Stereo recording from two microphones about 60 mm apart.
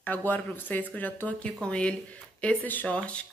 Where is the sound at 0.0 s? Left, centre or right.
Left.